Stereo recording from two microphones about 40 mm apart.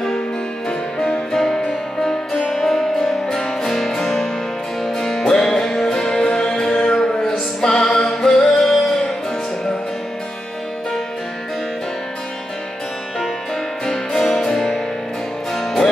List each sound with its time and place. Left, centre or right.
0.7 s music: centre
5.8 s music: centre
13.8 s music: centre